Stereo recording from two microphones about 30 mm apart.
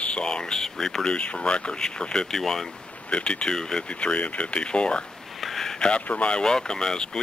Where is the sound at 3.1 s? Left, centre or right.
Left.